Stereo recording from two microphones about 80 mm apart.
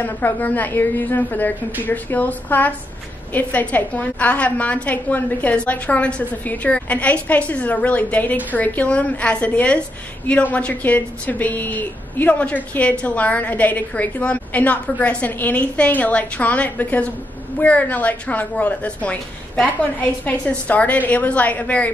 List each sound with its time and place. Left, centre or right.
0.0 s a woman's voice: left